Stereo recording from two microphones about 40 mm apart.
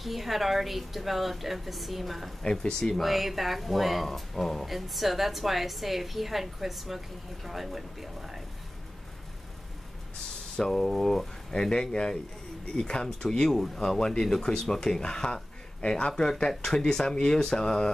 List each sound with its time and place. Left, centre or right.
0.0 s a woman's voice: centre
2.4 s speech: centre
3.0 s a woman's voice: centre
10.5 s speech: centre